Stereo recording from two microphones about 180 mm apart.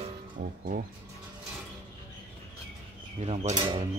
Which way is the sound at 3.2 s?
40° right (ahead or behind).